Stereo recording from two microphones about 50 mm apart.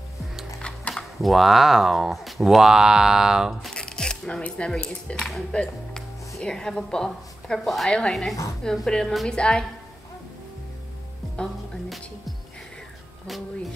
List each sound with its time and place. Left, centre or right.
0.6 s a sound: left
1.2 s speech: centre
3.7 s music: centre
4.4 s speech: left
4.8 s a woman's voice: centre
11.4 s speech: centre